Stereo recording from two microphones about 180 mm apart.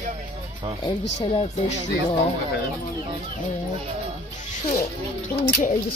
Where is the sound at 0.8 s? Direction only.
25° left (ahead or behind).